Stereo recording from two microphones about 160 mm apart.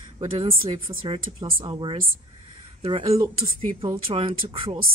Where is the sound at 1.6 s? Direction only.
30° right (ahead or behind).